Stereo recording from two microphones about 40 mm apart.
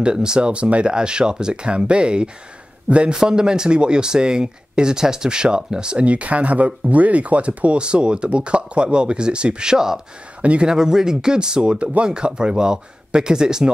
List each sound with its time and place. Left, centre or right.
0.0 s speech: centre
6.0 s speech: right; by 9.9 s centre
10.4 s a man's voice: right
10.7 s speech: centre